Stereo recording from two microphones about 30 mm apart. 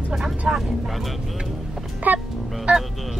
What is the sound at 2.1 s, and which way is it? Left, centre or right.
Music, right.